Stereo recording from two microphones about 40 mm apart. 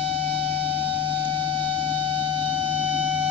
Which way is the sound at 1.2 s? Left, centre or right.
Left.